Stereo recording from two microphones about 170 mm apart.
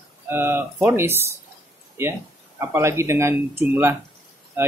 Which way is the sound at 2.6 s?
15° right (ahead or behind).